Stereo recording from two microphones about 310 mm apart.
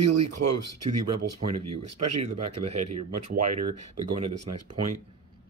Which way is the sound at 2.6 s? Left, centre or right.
Right.